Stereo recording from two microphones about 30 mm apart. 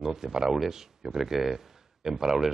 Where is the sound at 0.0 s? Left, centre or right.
Centre.